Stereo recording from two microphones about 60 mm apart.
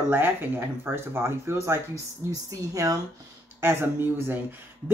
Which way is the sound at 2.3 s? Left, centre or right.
Right.